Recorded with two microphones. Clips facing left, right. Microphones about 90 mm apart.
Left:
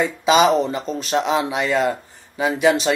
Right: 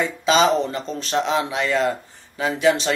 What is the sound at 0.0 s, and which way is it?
Speech, 15° left (ahead or behind).